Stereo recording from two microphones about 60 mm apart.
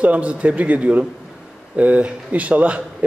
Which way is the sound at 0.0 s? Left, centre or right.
Right.